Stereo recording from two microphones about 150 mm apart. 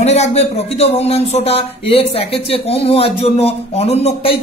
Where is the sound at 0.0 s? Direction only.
45° left (ahead or behind).